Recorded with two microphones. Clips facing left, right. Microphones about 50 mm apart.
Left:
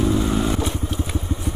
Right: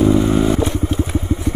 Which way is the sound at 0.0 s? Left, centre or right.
Right.